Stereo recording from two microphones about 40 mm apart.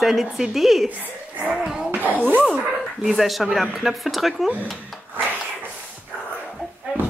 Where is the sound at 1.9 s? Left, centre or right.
Right.